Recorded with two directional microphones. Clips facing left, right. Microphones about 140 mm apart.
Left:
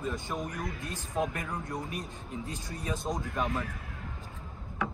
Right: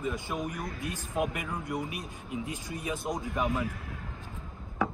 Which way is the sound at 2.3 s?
15° right (ahead or behind).